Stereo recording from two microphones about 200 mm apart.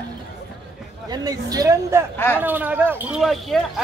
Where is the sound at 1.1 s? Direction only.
20° right (ahead or behind).